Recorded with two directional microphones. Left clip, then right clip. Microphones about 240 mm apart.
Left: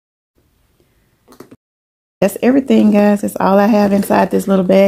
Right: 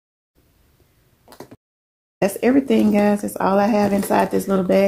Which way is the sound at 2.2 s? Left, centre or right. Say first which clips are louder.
Left 4 dB; left.